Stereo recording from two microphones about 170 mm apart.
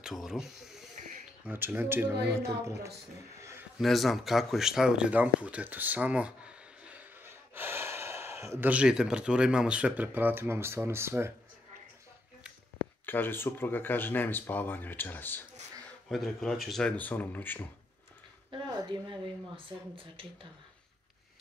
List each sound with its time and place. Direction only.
0.0 s speech: centre (ahead or behind)
3.3 s a sound: 15° right (ahead or behind)
3.8 s speech: centre (ahead or behind); by 11.3 s 15° right (ahead or behind)
13.0 s speech: 10° left (ahead or behind)
16.1 s speech: centre (ahead or behind)
18.5 s a woman's voice: 25° right (ahead or behind)